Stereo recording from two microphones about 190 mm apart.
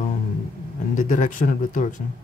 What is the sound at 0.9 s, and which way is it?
Speech, 40° left (ahead or behind).